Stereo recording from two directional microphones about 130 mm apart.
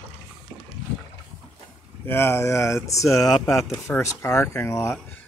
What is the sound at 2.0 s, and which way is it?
Speech, 20° left (ahead or behind).